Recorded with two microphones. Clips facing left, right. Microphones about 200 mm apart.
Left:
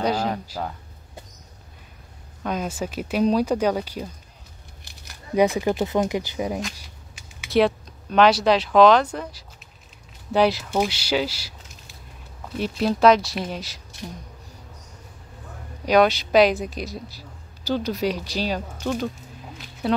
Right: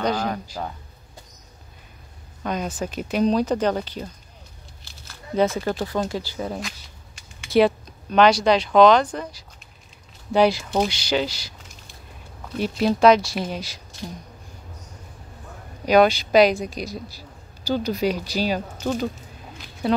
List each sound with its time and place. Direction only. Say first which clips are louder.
0.0 s speech: even; 10° left (ahead or behind)
2.4 s speech: even; 5° left (ahead or behind)
7.2 s speech: right 2 dB; 5° left (ahead or behind)
15.8 s speech: right 1 dB; centre (ahead or behind)